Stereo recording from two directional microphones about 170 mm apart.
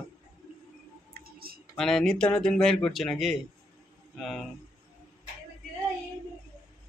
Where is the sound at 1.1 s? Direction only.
60° right (ahead or behind).